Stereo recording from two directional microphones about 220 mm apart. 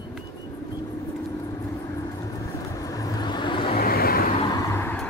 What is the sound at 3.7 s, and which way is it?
Vehicle, 40° left (ahead or behind).